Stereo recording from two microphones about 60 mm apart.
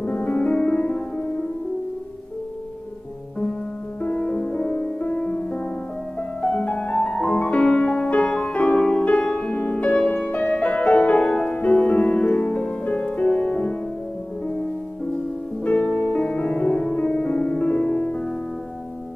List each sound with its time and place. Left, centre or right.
0.0 s music: left
4.0 s music: centre
11.6 s music: left
15.6 s music: left